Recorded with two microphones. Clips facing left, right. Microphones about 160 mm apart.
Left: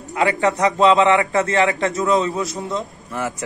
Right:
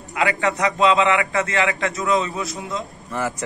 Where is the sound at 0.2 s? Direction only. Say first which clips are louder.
Left 3 dB; 35° left (ahead or behind).